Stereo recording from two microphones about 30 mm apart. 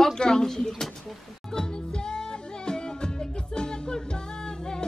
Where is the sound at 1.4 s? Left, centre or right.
Left.